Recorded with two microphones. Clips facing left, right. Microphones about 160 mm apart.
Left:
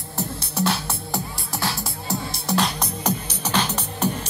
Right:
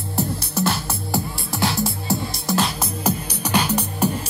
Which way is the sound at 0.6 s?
5° right (ahead or behind).